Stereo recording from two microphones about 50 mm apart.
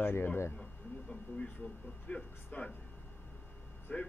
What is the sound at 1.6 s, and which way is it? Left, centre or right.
Speech, left.